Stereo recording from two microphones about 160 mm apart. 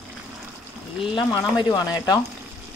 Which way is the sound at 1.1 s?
25° left (ahead or behind).